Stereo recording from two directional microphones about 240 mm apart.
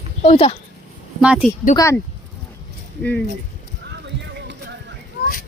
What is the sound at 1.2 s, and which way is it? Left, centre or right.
Speech, centre.